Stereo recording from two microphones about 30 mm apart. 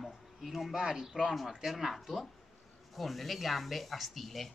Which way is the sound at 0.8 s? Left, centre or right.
Right.